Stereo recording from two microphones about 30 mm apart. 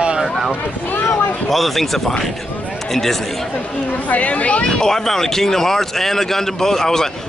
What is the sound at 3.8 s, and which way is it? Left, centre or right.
Speech, left.